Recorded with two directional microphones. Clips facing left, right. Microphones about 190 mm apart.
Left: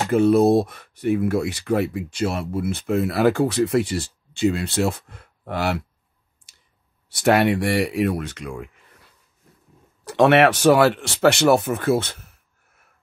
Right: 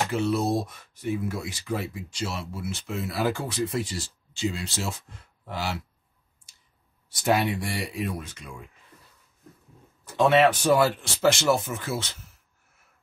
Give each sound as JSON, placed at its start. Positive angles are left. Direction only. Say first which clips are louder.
{"t": 0.1, "sound": "speech", "louder": "left 14 dB", "side_deg": 55}
{"t": 7.1, "sound": "speech", "louder": "left 7 dB", "side_deg": 70}
{"t": 10.0, "sound": "speech", "louder": "left 4 dB", "side_deg": 75}